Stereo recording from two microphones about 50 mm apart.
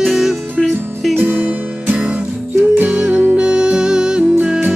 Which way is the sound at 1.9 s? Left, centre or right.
Right.